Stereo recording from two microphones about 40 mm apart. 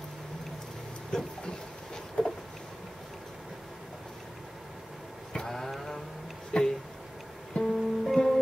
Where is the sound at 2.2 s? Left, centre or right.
Left.